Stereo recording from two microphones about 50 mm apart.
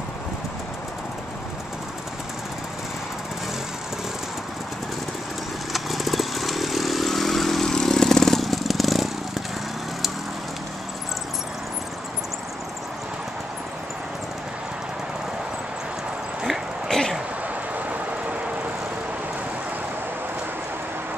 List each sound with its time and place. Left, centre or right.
5.7 s motorcycle: centre
7.8 s vehicle: centre
16.4 s a sound: centre
17.7 s vehicle: right